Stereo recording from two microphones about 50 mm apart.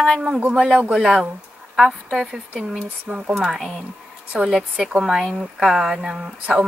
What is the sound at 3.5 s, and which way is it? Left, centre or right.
Speech, centre.